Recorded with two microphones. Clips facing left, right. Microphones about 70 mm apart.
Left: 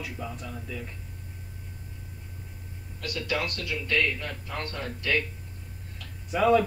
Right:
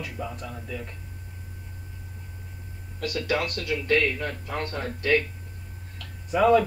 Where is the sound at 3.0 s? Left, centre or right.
Right.